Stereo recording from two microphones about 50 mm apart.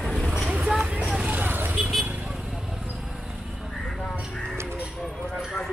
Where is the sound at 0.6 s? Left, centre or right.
Right.